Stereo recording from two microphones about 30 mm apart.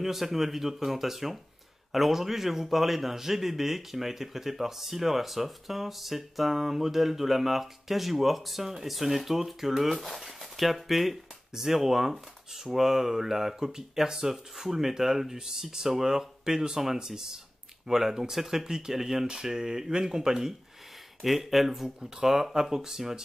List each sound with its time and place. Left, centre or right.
0.0 s a man's voice: centre
21.2 s speech: centre
21.8 s a man's voice: centre